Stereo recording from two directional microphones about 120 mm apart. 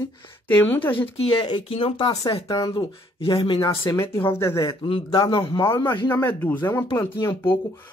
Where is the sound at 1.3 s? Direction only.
40° left (ahead or behind).